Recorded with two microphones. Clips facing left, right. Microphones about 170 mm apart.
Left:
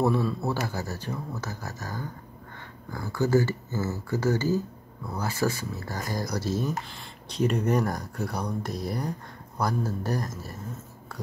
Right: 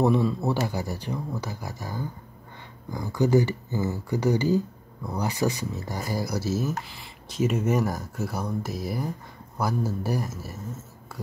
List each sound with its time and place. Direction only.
0.0 s speech: 15° right (ahead or behind)
5.9 s speech: 10° right (ahead or behind)